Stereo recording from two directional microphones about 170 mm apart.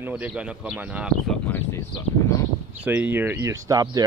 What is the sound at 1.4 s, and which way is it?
Speech, 10° left (ahead or behind).